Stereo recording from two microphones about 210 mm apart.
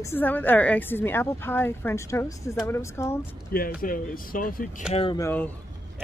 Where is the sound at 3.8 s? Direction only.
40° left (ahead or behind).